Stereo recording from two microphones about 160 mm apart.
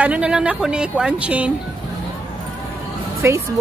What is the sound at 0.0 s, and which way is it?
A woman's voice, 5° right (ahead or behind).